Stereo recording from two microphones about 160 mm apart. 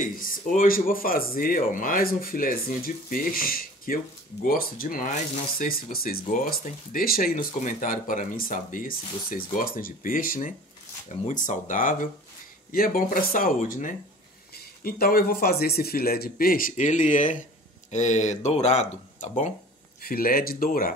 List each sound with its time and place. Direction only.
0.0 s speech: 60° left (ahead or behind)
6.2 s speech: 55° left (ahead or behind)
11.1 s speech: 50° left (ahead or behind)
12.7 s speech: 65° left (ahead or behind)
14.5 s speech: 70° left (ahead or behind); by 19.5 s 50° left (ahead or behind)
20.0 s speech: 70° left (ahead or behind)